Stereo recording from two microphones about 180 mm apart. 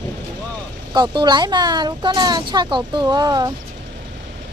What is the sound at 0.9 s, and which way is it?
Speech, 25° right (ahead or behind).